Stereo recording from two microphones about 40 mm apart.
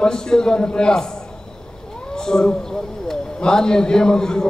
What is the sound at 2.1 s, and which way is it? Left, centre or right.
Cat, centre.